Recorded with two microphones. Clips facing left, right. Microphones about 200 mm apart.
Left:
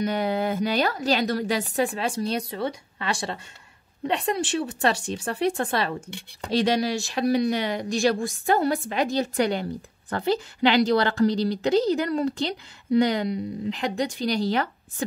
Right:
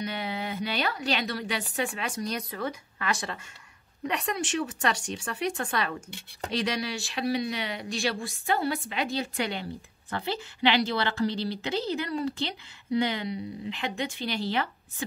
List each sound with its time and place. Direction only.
0.0 s a woman's voice: 45° left (ahead or behind)